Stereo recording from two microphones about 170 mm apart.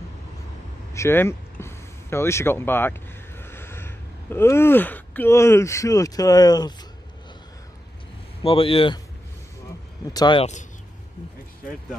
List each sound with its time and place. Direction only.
0.9 s speech: 15° left (ahead or behind)
8.5 s speech: 30° left (ahead or behind)
10.1 s speech: 25° left (ahead or behind)